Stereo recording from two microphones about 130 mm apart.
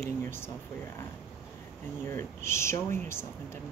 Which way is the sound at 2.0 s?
20° left (ahead or behind).